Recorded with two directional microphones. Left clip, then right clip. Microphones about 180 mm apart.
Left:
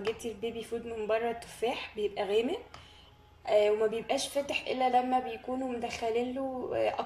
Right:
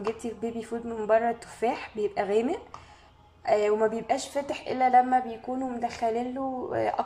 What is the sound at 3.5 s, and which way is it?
A woman's voice, centre (ahead or behind).